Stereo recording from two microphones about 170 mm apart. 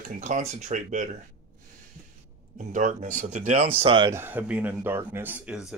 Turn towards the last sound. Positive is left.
turn(degrees=-5)  # may be behind; listen again after turning